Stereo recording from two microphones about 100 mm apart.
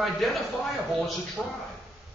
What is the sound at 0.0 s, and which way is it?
A man's voice, centre (ahead or behind).